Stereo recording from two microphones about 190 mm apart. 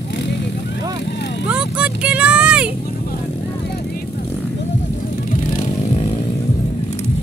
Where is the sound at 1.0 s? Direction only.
65° left (ahead or behind).